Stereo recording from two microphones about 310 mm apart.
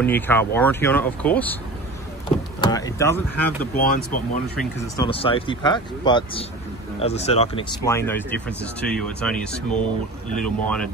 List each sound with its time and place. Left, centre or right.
0.0 s speech: centre
2.2 s vehicle: centre
3.7 s speech: left
4.9 s speech: centre
7.8 s speech: centre